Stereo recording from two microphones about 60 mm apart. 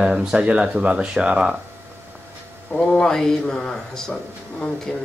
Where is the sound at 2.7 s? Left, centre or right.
Centre.